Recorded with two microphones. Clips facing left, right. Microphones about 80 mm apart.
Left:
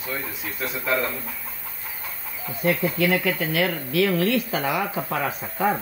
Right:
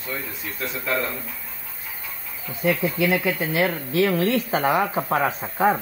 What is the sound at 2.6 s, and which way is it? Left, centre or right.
Speech, centre.